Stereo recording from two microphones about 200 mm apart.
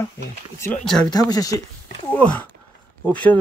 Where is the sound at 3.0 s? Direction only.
5° left (ahead or behind).